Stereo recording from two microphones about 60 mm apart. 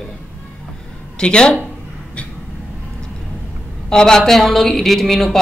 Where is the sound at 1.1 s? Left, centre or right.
Centre.